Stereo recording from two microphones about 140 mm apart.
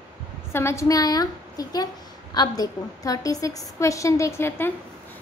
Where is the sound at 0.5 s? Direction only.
20° left (ahead or behind).